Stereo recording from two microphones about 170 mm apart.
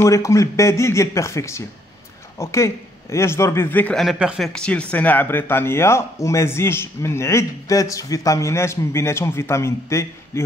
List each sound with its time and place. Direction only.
0.0 s speech: 15° left (ahead or behind)